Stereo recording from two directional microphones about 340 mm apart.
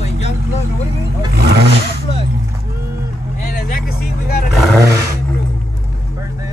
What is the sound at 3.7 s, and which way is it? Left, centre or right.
Speech, left.